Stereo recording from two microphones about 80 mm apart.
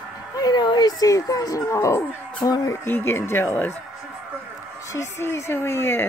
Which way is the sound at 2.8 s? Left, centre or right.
Left.